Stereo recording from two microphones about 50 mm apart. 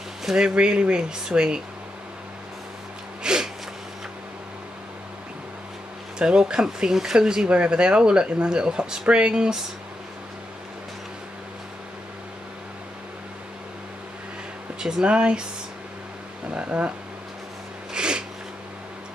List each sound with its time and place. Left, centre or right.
0.2 s speech: centre
0.6 s speech: centre
3.3 s a sound: centre
6.1 s speech: centre
14.8 s speech: centre
16.4 s speech: right
17.9 s snort: centre